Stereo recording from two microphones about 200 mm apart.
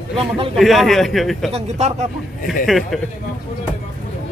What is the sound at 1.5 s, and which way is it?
Speech, 35° right (ahead or behind).